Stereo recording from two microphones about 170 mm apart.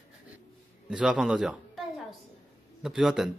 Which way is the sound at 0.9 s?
5° right (ahead or behind).